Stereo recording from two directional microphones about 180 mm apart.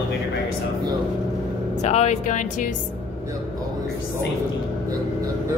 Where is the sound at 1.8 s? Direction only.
40° left (ahead or behind).